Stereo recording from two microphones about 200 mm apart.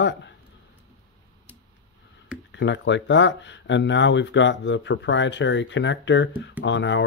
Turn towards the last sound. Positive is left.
turn(degrees=65)  # may be behind; listen again after turning